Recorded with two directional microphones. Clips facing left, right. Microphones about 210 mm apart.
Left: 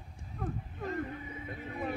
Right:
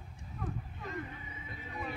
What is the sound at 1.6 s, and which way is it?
Vehicle, 50° left (ahead or behind).